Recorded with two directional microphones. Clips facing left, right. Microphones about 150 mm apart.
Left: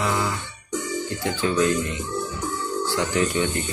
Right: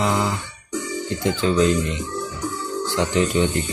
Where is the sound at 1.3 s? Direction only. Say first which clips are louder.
Right 3 dB; 20° right (ahead or behind).